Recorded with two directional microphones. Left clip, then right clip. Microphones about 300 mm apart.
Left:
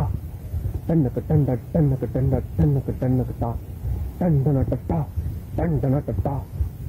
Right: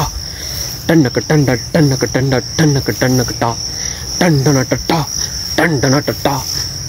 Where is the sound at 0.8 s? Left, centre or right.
Centre.